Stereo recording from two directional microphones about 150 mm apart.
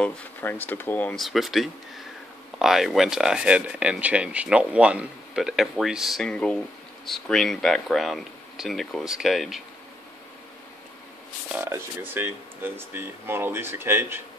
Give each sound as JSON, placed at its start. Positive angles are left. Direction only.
{"t": 0.0, "sound": "speech", "side_deg": 15}
{"t": 11.5, "sound": "speech", "side_deg": -15}